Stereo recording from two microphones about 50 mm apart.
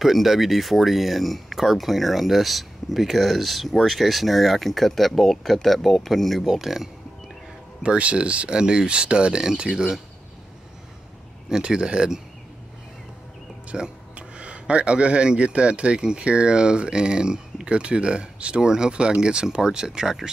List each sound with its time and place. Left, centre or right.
0.0 s speech: centre
7.8 s speech: right
11.4 s speech: centre
13.7 s speech: right